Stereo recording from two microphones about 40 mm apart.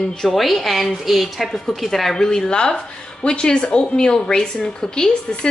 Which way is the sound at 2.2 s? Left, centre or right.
Centre.